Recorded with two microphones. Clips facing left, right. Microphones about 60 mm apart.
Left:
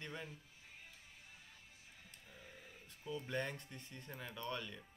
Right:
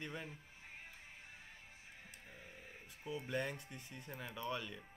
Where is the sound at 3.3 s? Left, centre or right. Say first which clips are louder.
Right 2 dB; centre.